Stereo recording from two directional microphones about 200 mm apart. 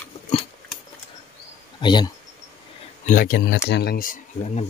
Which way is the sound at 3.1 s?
45° left (ahead or behind).